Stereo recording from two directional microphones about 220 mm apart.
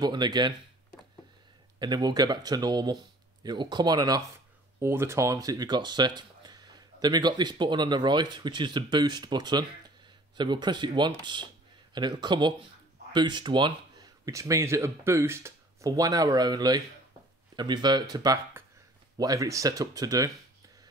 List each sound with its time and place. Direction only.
0.0 s speech: 20° right (ahead or behind)
1.8 s speech: 20° right (ahead or behind)